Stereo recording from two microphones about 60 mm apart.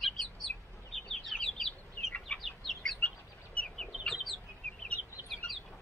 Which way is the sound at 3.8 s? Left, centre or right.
Centre.